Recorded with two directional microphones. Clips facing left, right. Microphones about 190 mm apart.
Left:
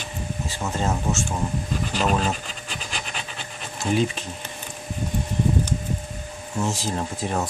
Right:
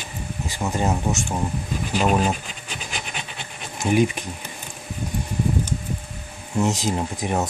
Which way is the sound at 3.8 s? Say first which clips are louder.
Right 3 dB; 15° right (ahead or behind).